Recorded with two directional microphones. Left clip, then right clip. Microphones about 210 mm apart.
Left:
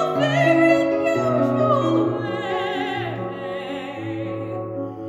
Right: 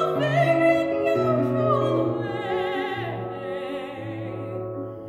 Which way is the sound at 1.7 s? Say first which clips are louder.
Left 3 dB; 5° left (ahead or behind).